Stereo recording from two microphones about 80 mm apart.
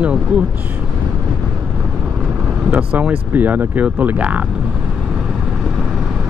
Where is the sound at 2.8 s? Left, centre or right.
Centre.